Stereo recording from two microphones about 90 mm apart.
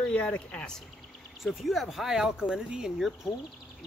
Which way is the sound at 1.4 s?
Centre (ahead or behind).